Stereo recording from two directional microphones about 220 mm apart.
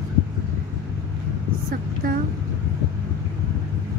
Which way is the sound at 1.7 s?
40° right (ahead or behind).